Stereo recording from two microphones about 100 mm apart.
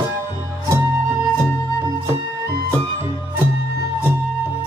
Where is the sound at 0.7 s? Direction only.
30° right (ahead or behind).